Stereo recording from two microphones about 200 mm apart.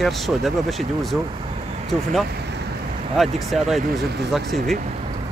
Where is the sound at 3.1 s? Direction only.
Centre (ahead or behind).